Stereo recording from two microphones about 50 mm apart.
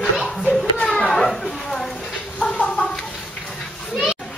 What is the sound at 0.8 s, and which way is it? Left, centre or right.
Children playing, centre.